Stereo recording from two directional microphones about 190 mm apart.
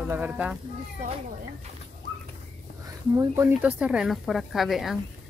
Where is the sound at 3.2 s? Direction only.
15° right (ahead or behind).